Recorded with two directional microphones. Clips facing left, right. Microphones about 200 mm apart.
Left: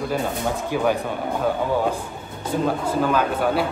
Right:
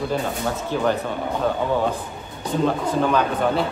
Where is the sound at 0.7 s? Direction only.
10° left (ahead or behind).